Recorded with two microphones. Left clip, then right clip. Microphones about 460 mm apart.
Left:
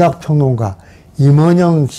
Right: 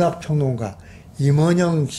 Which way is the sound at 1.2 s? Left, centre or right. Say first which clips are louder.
Left 7 dB; left.